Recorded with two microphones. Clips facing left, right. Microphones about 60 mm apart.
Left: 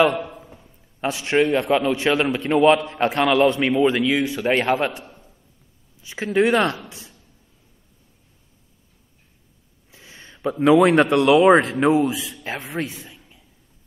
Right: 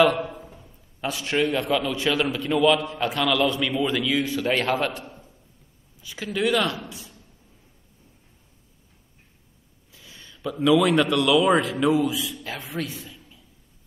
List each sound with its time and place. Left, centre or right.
0.0 s a man's voice: left
6.0 s a man's voice: left
9.8 s speech: left